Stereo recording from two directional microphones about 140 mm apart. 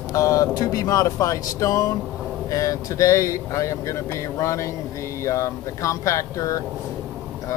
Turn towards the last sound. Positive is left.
turn(degrees=25)  # may be behind; listen again after turning